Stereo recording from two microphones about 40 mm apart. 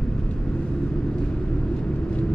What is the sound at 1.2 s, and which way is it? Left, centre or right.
Vehicle, left.